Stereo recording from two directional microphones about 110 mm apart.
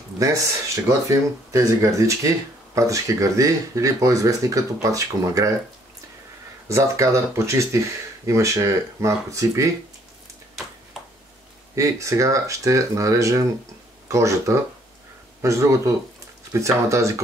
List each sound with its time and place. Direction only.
0.2 s speech: 30° right (ahead or behind)
6.7 s speech: 25° right (ahead or behind)
11.7 s speech: 25° right (ahead or behind)